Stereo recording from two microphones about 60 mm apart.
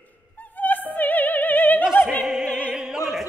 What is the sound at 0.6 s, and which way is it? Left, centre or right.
Opera, left.